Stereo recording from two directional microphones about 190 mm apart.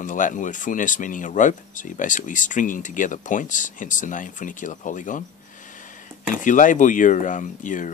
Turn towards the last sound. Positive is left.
turn(degrees=40)  # may be behind; listen again after turning